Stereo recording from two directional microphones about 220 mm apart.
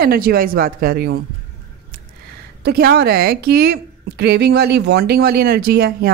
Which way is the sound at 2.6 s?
45° right (ahead or behind).